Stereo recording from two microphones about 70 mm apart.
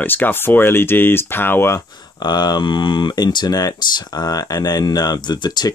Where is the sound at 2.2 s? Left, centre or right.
Left.